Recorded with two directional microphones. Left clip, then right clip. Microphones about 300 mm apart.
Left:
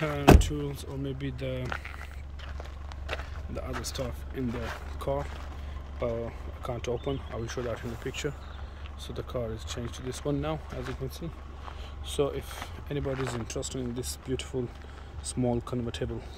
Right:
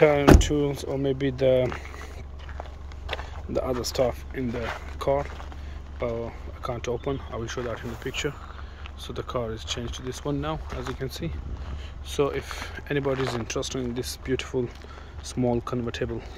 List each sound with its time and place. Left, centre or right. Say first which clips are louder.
0.0 s speech: right 5 dB; centre
3.1 s a sound: right 5 dB; centre
3.8 s speech: right 12 dB; centre